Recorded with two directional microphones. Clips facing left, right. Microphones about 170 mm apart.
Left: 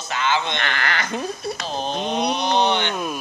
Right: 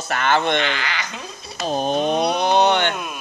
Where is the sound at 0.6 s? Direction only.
55° left (ahead or behind).